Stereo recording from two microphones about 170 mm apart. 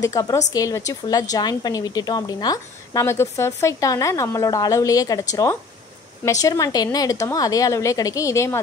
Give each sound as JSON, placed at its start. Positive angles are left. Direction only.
{"t": 0.0, "sound": "a woman's voice", "side_deg": 20}